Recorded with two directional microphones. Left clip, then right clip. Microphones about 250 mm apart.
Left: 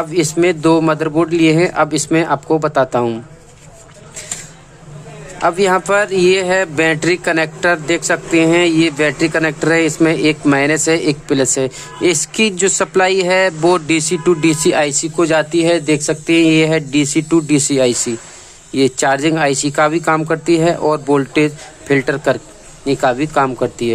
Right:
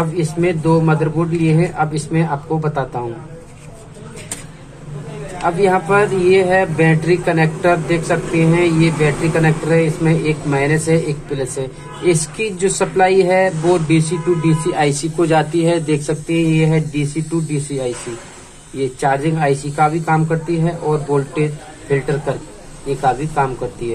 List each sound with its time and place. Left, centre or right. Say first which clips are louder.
0.1 s speech: left 4 dB; left
5.6 s speech: right 1 dB; left